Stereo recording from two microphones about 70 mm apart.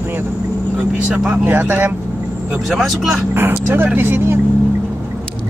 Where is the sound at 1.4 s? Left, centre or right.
Right.